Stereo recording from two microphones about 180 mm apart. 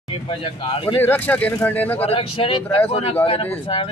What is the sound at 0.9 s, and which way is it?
Speech, 10° left (ahead or behind).